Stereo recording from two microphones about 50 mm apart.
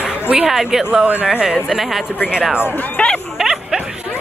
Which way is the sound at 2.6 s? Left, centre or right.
Left.